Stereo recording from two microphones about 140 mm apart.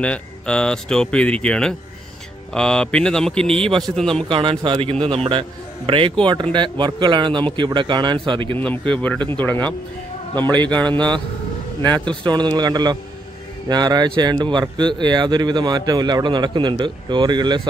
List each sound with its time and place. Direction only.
0.0 s a man's voice: 10° left (ahead or behind)
4.3 s speech: 40° right (ahead or behind)
8.5 s speech: 10° left (ahead or behind)
10.9 s speech: 35° right (ahead or behind)